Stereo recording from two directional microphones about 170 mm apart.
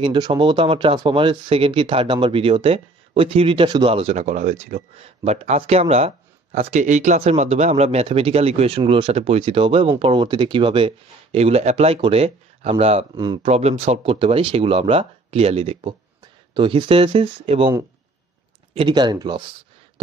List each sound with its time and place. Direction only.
0.0 s speech: 30° right (ahead or behind)
13.1 s speech: 25° right (ahead or behind)
13.5 s speech: 40° right (ahead or behind)
18.8 s speech: 25° right (ahead or behind)